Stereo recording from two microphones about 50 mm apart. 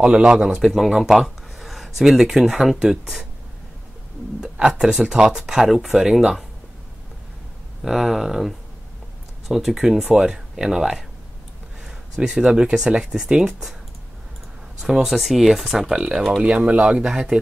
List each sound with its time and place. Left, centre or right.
0.0 s speech: centre
4.4 s speech: centre
7.8 s speech: centre
12.2 s speech: centre
14.8 s speech: centre
16.5 s speech: right